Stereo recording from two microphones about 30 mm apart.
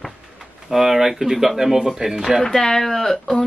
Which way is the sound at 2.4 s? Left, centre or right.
Centre.